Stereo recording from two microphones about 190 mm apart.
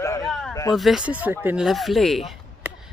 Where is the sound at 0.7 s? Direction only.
Centre (ahead or behind).